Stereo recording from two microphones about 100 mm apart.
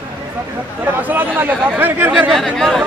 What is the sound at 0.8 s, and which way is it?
Speech, 20° right (ahead or behind).